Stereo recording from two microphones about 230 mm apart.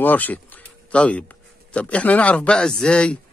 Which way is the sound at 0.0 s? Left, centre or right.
Centre.